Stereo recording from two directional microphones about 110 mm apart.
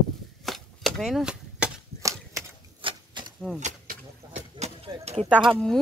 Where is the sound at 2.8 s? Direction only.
45° right (ahead or behind).